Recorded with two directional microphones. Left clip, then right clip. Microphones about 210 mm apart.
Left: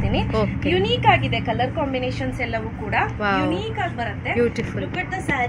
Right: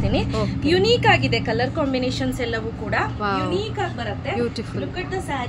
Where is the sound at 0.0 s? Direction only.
20° right (ahead or behind).